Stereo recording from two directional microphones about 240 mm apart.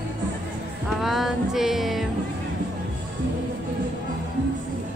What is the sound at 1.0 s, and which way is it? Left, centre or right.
Music, centre.